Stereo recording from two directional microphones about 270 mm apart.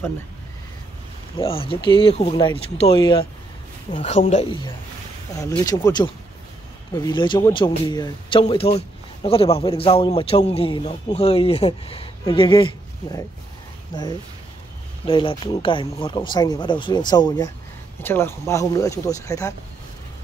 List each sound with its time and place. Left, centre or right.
1.4 s a man's voice: left
15.0 s speech: centre